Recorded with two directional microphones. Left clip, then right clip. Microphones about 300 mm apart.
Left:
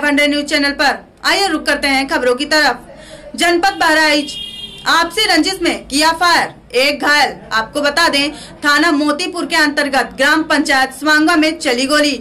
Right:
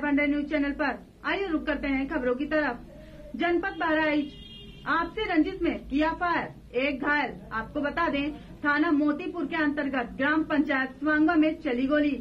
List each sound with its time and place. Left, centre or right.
0.0 s a woman's voice: centre